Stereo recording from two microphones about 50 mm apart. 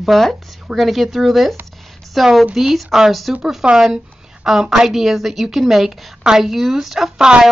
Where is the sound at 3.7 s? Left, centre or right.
Centre.